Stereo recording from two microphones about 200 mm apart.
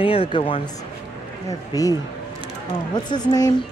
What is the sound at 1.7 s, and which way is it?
A man's voice, 20° left (ahead or behind).